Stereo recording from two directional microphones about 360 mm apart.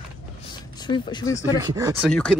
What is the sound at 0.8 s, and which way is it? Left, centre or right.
Speech, centre.